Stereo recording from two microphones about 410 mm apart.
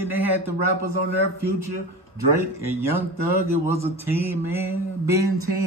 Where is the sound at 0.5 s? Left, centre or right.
Right.